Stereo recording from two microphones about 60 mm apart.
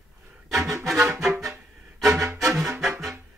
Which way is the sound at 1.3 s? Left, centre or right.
Right.